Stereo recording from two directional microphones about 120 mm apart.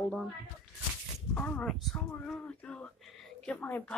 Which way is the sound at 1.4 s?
10° left (ahead or behind).